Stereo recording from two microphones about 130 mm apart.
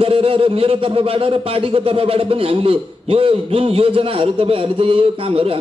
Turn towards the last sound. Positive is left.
turn(degrees=-45)  # may be behind; listen again after turning